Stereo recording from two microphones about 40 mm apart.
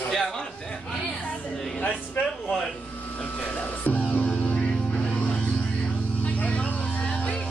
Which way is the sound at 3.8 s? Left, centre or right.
Left.